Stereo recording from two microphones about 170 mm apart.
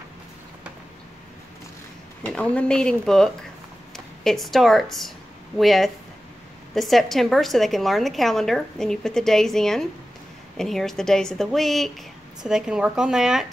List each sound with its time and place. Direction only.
2.2 s a woman's voice: 5° left (ahead or behind)